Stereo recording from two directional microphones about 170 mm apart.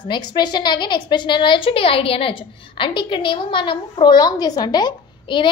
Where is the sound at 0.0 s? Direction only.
25° left (ahead or behind).